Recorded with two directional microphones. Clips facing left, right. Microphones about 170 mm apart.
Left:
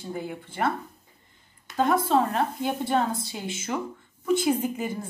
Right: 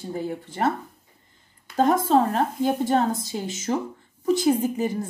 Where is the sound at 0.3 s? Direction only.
40° right (ahead or behind).